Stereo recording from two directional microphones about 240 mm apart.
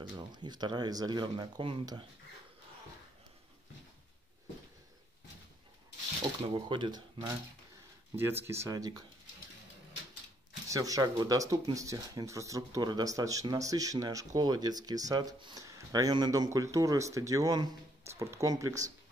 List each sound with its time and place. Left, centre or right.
0.1 s speech: centre
6.4 s speech: right
8.2 s speech: centre
10.7 s speech: centre